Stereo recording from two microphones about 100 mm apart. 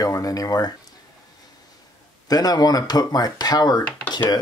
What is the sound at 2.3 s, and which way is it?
Speech, 40° left (ahead or behind).